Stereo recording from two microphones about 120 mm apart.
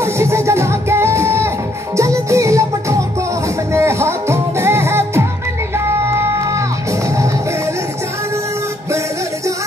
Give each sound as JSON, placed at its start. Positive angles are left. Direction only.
{"t": 0.0, "sound": "music", "side_deg": -20}